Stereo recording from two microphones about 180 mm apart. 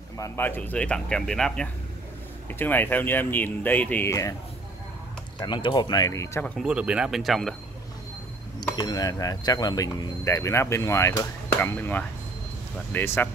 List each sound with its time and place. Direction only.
0.2 s speech: 10° left (ahead or behind)
5.4 s speech: 25° left (ahead or behind); by 6.7 s 5° left (ahead or behind)
6.7 s speech: 5° right (ahead or behind)
8.7 s speech: 20° left (ahead or behind)